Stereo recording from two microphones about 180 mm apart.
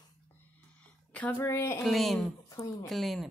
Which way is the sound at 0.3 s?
5° left (ahead or behind).